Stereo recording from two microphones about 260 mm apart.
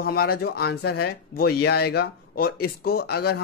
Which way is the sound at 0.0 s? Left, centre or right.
Left.